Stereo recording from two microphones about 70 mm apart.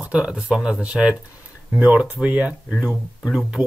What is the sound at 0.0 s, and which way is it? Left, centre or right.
Speech, centre.